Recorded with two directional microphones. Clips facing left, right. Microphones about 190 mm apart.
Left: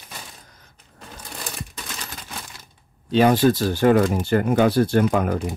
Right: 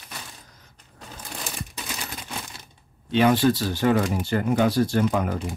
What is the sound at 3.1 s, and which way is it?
Speech, 40° left (ahead or behind).